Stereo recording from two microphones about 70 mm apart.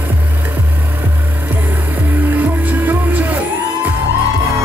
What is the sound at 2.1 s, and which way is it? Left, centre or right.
Music, right.